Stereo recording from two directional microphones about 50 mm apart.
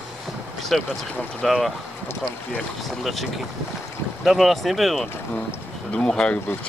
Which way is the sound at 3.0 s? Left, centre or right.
Centre.